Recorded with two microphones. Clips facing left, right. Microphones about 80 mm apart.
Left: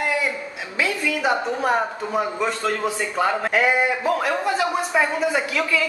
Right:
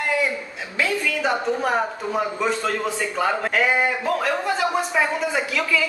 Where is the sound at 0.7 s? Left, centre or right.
Centre.